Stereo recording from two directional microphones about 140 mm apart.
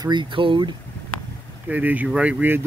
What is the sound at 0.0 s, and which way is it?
Speech, 35° right (ahead or behind).